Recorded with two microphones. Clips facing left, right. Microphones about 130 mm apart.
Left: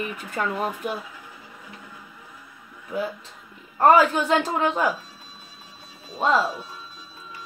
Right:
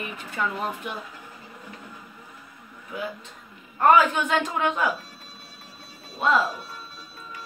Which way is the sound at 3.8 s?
35° left (ahead or behind).